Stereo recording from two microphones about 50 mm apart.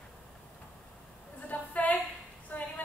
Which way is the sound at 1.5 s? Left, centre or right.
Left.